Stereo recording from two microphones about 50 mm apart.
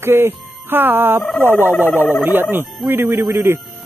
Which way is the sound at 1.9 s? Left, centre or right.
Left.